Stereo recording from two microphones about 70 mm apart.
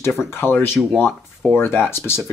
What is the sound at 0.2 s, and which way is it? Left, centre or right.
Speech, left.